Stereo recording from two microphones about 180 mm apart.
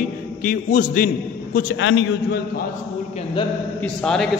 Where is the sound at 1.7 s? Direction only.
90° left.